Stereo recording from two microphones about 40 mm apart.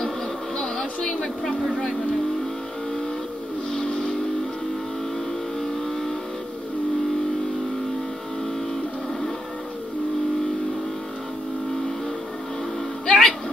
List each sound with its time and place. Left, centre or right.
0.6 s a sound: centre
3.7 s vehicle: centre
13.0 s music: centre